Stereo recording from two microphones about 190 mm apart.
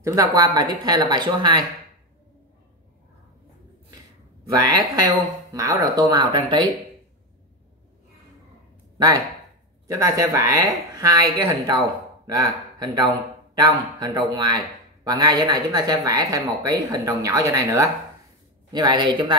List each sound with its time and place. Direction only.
0.0 s speech: 15° right (ahead or behind)
4.5 s speech: 20° right (ahead or behind)
8.9 s speech: 20° right (ahead or behind)